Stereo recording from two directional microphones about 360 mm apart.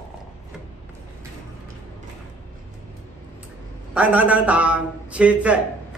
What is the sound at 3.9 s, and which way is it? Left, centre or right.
A man's voice, centre.